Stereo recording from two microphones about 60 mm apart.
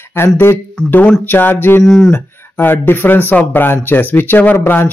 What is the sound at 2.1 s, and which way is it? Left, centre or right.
Speech, left.